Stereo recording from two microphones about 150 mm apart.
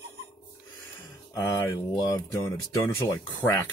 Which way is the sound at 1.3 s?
20° left (ahead or behind).